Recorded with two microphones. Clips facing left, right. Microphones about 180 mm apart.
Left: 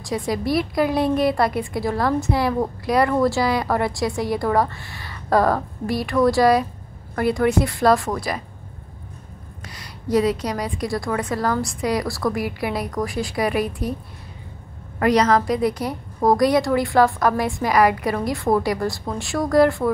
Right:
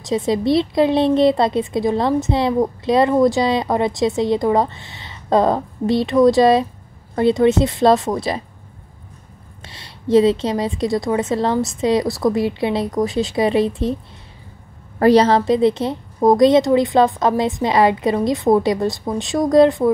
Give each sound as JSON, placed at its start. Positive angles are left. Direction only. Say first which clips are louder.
{"t": 0.0, "sound": "a woman's voice", "louder": "right 5 dB", "side_deg": -25}
{"t": 9.6, "sound": "a woman's voice", "louder": "even", "side_deg": -25}
{"t": 15.0, "sound": "a woman's voice", "louder": "right 5 dB", "side_deg": -30}